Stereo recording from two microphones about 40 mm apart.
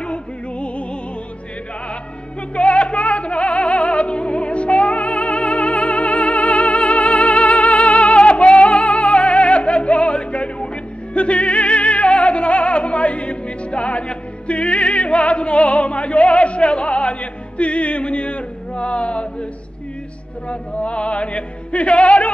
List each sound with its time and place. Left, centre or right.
0.0 s music: left
2.5 s music: left
20.4 s music: left